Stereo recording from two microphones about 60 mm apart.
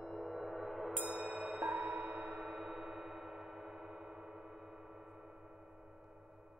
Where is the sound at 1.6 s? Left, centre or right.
Right.